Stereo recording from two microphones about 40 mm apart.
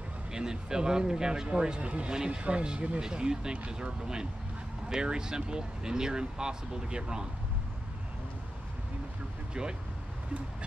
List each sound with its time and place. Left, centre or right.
0.3 s speech: centre
9.5 s speech: centre